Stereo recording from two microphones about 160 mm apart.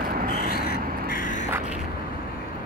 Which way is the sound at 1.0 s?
60° left (ahead or behind).